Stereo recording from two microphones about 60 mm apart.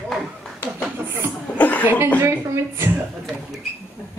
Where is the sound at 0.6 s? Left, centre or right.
Left.